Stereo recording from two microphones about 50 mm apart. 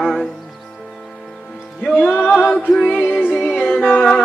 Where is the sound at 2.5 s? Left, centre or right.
Centre.